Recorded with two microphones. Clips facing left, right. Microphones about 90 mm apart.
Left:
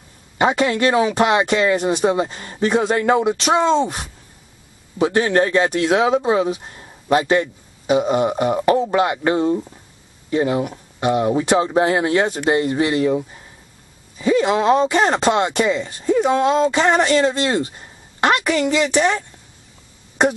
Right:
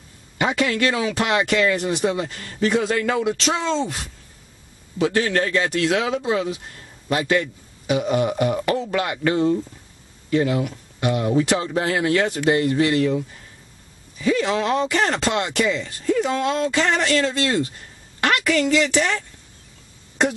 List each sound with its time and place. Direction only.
0.4 s a man's voice: 30° left (ahead or behind)